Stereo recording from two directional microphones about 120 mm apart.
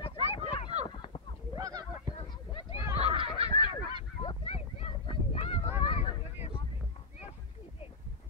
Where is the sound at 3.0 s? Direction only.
50° right (ahead or behind).